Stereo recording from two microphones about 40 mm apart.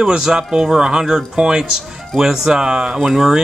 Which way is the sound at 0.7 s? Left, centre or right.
Centre.